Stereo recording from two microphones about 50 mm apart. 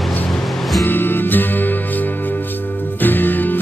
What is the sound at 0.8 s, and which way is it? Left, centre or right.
Music, left.